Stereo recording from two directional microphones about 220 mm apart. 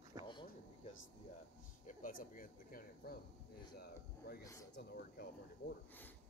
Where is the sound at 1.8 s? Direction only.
40° left (ahead or behind).